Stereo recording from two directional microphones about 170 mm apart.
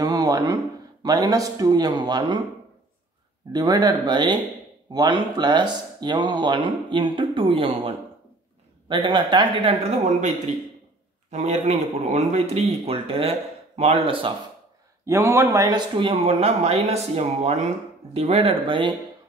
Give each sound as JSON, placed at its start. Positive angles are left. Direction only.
{"t": 0.0, "sound": "a sound", "side_deg": -20}
{"t": 1.0, "sound": "speech", "side_deg": -20}
{"t": 3.5, "sound": "a man's voice", "side_deg": -25}
{"t": 15.0, "sound": "a man's voice", "side_deg": -15}